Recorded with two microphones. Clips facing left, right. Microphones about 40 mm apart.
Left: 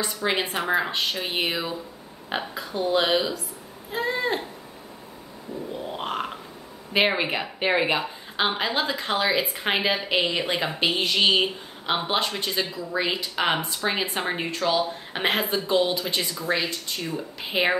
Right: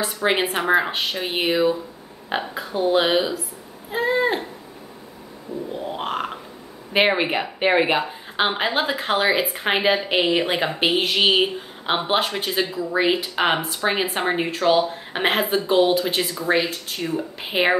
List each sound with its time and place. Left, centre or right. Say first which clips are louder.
0.2 s a woman's voice: right 5 dB; right
5.7 s a sound: right 3 dB; centre
6.9 s speech: right 3 dB; centre